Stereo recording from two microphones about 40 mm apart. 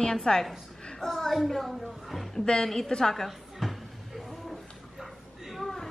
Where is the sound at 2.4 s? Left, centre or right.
Centre.